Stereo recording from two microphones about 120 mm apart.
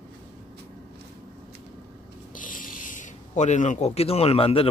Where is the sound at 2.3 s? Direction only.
90° left; by 4.6 s 55° left (ahead or behind).